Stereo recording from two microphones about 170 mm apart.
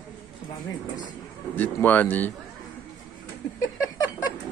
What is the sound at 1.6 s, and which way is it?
Speech, 10° left (ahead or behind).